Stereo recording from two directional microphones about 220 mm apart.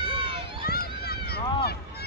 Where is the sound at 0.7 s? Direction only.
45° left (ahead or behind).